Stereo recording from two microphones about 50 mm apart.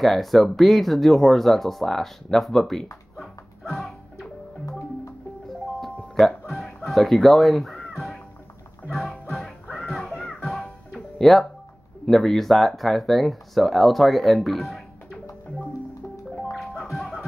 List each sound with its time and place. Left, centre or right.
0.0 s speech: centre
3.2 s music: centre
6.1 s music: centre
9.8 s music: centre
12.1 s speech: centre
16.5 s music: centre